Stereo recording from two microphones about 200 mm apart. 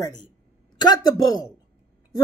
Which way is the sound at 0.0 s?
20° left (ahead or behind).